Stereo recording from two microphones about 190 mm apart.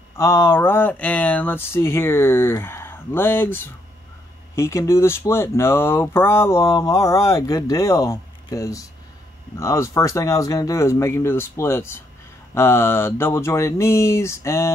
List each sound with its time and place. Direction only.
0.2 s speech: 15° left (ahead or behind)